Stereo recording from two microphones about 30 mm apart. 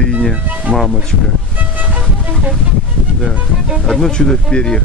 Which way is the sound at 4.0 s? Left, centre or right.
Left.